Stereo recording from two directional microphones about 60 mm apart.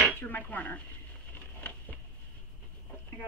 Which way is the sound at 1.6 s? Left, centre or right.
Left.